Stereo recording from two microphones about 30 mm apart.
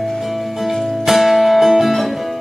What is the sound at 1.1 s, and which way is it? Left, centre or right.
Music, centre.